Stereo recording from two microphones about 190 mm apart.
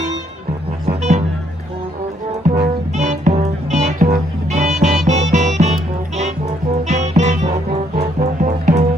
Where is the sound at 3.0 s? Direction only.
40° right (ahead or behind).